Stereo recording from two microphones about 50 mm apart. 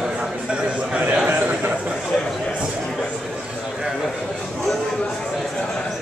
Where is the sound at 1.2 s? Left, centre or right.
Right.